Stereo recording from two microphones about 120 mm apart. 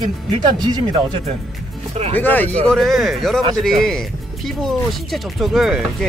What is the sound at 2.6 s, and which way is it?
Speech, 5° left (ahead or behind).